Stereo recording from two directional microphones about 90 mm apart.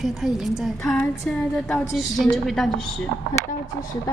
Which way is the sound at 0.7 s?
25° left (ahead or behind).